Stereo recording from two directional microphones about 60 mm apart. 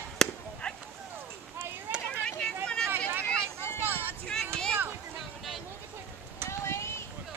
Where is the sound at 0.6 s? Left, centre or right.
Centre.